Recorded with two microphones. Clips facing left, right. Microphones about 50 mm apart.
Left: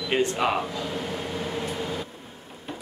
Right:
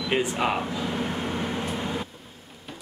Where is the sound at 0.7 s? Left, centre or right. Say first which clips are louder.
Right 2 dB; centre.